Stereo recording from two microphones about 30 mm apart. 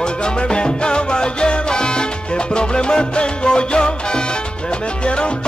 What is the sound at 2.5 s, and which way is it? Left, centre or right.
Music, left.